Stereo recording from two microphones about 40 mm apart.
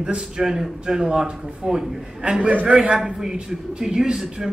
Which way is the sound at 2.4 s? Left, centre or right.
Right.